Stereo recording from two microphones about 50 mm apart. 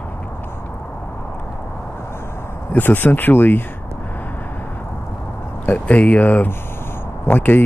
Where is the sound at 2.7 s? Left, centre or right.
Left.